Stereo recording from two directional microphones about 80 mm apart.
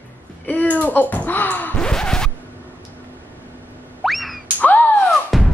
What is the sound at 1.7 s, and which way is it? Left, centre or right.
Music, centre.